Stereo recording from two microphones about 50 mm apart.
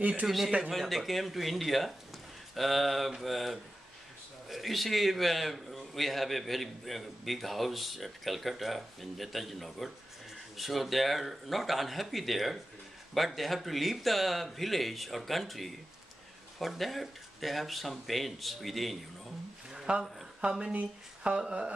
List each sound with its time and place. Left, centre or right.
0.0 s speech: right
0.7 s a man's voice: centre
19.9 s speech: right